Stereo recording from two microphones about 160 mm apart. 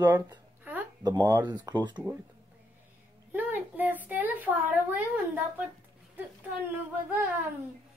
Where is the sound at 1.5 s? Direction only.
30° right (ahead or behind).